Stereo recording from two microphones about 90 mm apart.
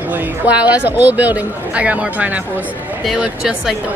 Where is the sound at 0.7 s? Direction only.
20° right (ahead or behind).